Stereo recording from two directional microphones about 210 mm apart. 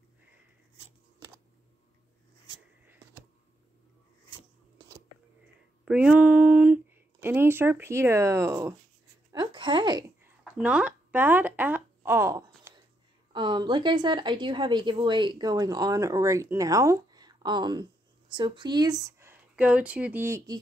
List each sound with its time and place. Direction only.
5.9 s speech: 5° right (ahead or behind)
9.3 s a sound: 20° right (ahead or behind)
10.4 s speech: 5° right (ahead or behind)